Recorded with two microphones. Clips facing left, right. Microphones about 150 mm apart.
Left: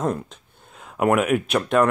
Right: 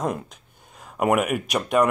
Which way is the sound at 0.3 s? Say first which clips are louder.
Left 2 dB; 5° right (ahead or behind).